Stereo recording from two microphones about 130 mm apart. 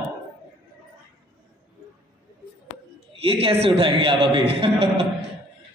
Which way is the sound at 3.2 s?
50° right (ahead or behind).